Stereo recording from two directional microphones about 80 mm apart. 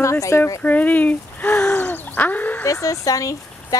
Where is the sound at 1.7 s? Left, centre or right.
Left.